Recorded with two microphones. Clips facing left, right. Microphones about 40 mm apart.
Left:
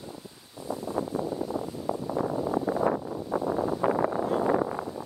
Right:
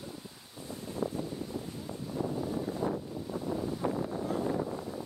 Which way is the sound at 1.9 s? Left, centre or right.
Left.